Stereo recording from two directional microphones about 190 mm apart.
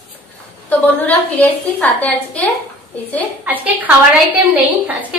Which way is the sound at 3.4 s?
10° right (ahead or behind).